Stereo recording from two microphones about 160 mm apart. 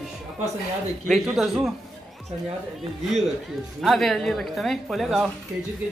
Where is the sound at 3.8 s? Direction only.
Centre (ahead or behind).